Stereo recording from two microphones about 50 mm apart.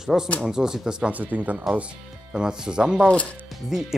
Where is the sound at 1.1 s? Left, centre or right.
Right.